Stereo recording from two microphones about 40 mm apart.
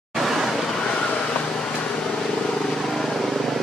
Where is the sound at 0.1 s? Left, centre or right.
Centre.